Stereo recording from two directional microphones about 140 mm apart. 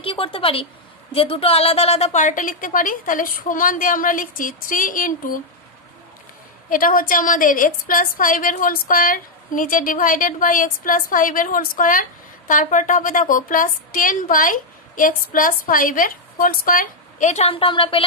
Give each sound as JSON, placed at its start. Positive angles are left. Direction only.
{"t": 0.0, "sound": "a woman's voice", "side_deg": 40}
{"t": 6.7, "sound": "a woman's voice", "side_deg": 80}